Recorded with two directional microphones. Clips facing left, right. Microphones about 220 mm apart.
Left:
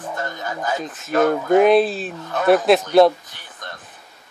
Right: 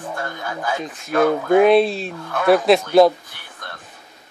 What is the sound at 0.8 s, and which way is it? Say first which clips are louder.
Speech: right 1 dB; centre (ahead or behind).